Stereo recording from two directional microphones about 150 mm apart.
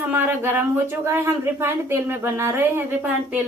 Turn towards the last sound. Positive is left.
turn(degrees=-10)  # may be behind; listen again after turning